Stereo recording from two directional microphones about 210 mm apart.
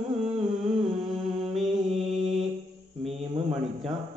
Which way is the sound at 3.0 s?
30° right (ahead or behind).